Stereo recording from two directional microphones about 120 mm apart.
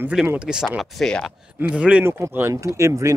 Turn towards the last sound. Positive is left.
turn(degrees=-25)  # may be behind; listen again after turning